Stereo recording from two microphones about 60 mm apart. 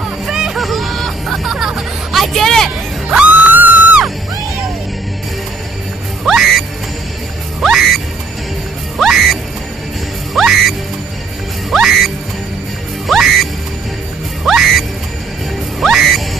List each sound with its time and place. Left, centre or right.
0.3 s music: centre
3.1 s music: right
6.2 s music: centre
7.6 s music: centre